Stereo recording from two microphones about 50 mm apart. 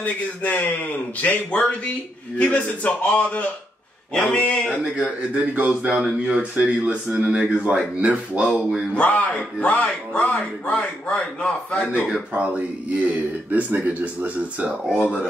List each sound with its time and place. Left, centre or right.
0.0 s a man's voice: left
4.9 s speech: right
8.9 s speech: left
12.4 s speech: right